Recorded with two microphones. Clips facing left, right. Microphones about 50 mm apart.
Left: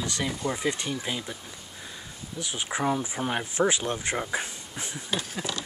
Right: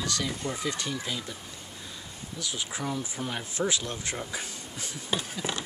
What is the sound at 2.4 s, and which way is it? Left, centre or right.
Speech, left.